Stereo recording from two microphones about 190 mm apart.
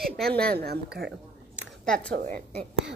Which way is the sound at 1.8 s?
5° left (ahead or behind).